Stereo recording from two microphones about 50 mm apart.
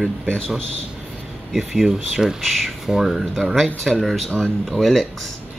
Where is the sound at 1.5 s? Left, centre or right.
Centre.